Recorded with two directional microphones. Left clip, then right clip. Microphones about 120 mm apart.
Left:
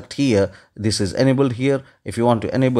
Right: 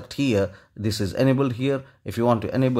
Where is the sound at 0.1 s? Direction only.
25° left (ahead or behind).